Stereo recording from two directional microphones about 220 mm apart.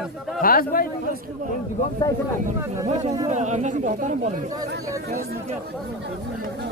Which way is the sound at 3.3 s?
30° right (ahead or behind).